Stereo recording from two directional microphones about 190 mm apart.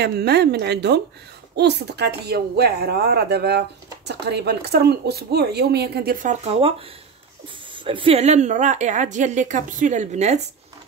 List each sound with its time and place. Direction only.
0.0 s speech: 60° right (ahead or behind)
6.4 s speech: 35° right (ahead or behind)
7.7 s speech: 25° right (ahead or behind)